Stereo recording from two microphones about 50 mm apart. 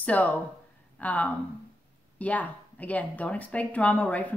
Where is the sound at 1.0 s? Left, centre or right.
Left.